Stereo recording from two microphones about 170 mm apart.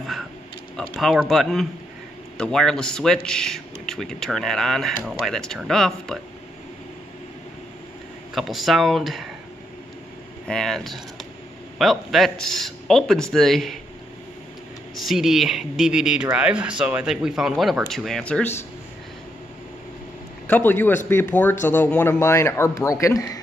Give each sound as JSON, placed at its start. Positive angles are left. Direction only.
{"t": 0.9, "sound": "speech", "side_deg": 0}
{"t": 8.4, "sound": "speech", "side_deg": 0}
{"t": 10.4, "sound": "speech", "side_deg": 5}
{"t": 15.0, "sound": "speech", "side_deg": 0}
{"t": 20.4, "sound": "a man's voice", "side_deg": 10}